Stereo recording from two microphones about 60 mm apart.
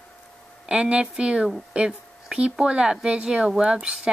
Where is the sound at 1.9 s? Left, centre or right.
Centre.